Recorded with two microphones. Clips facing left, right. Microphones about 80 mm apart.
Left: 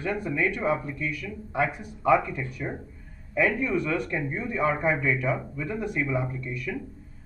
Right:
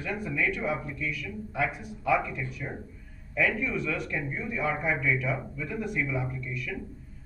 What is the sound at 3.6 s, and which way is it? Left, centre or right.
Speech, left.